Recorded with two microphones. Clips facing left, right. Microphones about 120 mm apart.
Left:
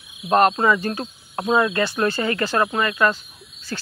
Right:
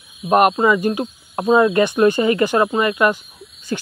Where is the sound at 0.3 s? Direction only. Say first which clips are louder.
Right 3 dB; 15° right (ahead or behind).